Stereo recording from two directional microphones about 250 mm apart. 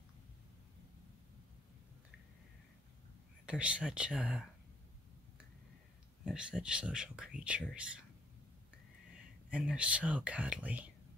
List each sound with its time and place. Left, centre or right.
3.4 s speech: centre
6.2 s speech: centre
9.5 s speech: centre